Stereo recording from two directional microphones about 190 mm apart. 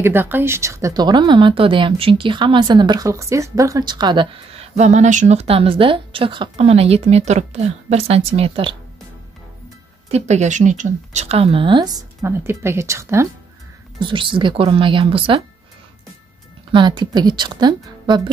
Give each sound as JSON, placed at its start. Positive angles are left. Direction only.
{"t": 0.0, "sound": "speech", "side_deg": -10}
{"t": 4.7, "sound": "speech", "side_deg": -40}
{"t": 10.0, "sound": "speech", "side_deg": -35}
{"t": 13.9, "sound": "speech", "side_deg": -25}
{"t": 16.7, "sound": "speech", "side_deg": -25}